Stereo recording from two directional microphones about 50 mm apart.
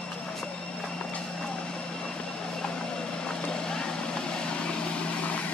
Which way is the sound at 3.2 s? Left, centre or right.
Centre.